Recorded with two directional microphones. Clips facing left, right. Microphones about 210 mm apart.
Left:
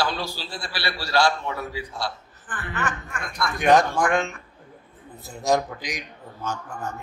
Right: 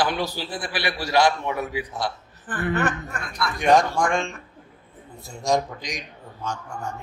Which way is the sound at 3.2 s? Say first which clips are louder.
Left 1 dB; 45° left (ahead or behind).